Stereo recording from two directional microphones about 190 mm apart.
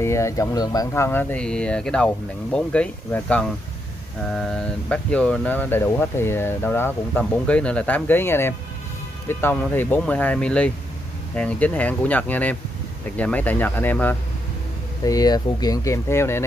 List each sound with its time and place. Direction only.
0.0 s speech: 15° left (ahead or behind)
15.0 s speech: 20° left (ahead or behind)